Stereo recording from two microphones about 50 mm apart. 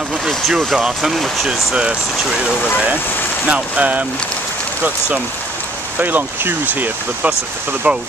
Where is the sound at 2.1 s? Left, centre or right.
Centre.